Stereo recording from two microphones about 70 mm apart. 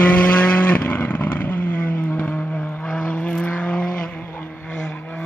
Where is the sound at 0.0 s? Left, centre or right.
Left.